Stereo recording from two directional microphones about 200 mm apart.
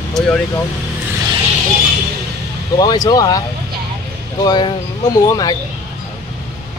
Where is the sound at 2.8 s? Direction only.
20° left (ahead or behind).